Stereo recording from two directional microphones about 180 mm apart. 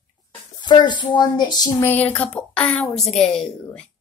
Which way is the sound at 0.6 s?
25° left (ahead or behind).